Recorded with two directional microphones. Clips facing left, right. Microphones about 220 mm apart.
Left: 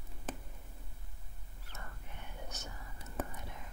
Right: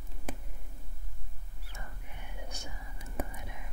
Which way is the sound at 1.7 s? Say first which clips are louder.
Right 2 dB; 10° right (ahead or behind).